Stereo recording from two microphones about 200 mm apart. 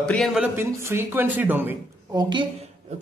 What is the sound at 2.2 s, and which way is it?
Speech, 25° right (ahead or behind).